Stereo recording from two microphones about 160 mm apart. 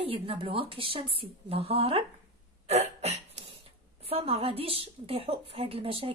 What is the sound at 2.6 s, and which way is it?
Cough, 40° right (ahead or behind).